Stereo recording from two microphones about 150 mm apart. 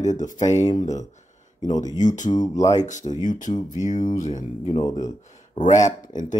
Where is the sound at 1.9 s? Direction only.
55° left (ahead or behind).